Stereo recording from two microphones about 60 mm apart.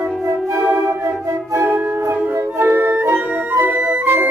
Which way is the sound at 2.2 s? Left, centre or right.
Right.